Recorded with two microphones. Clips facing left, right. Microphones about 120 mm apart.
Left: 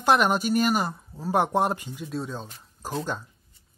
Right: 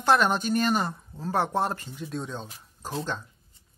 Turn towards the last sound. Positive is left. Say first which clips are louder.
# left 2 dB
turn(degrees=10)  # may be behind; listen again after turning